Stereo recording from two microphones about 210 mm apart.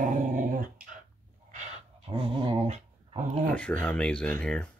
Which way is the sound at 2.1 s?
30° right (ahead or behind).